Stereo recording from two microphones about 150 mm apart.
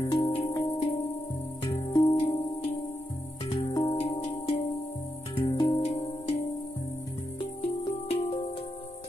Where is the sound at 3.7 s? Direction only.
25° left (ahead or behind).